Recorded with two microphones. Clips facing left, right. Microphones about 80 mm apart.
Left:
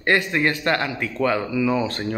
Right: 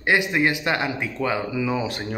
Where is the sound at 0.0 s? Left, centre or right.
Centre.